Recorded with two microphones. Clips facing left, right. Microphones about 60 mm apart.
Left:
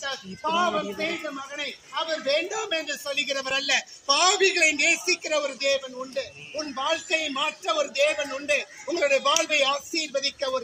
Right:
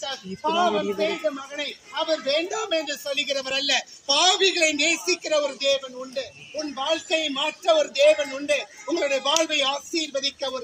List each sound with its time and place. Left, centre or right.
0.0 s speech: left
2.0 s a man's voice: left
8.9 s speech: left